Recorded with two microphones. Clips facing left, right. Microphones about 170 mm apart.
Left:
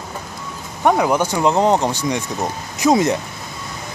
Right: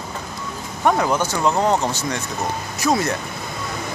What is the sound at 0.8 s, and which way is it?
Speech, 15° left (ahead or behind).